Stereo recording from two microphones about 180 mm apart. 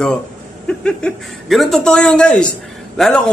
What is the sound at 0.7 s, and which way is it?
A man's voice, 5° left (ahead or behind).